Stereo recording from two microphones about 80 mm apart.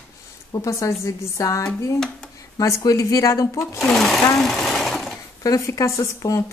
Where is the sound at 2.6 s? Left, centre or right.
Left.